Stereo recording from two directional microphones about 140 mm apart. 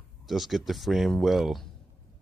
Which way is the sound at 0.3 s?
Centre (ahead or behind).